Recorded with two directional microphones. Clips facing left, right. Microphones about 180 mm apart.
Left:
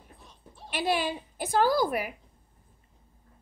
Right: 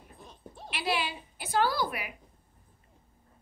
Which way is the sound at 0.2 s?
45° right (ahead or behind).